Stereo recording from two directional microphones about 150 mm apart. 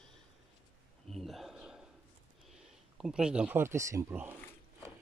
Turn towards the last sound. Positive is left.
turn(degrees=-10)  # may be behind; listen again after turning